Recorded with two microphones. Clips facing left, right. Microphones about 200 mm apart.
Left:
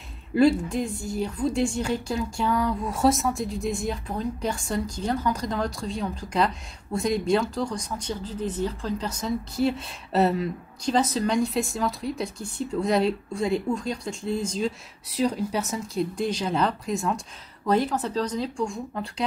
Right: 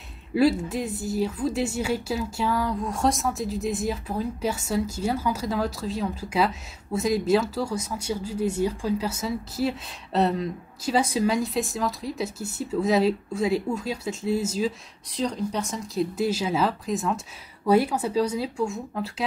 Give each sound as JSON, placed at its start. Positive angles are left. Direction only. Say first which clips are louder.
{"t": 0.3, "sound": "speech", "louder": "left 1 dB", "side_deg": -5}
{"t": 15.0, "sound": "speech", "louder": "left 2 dB", "side_deg": 5}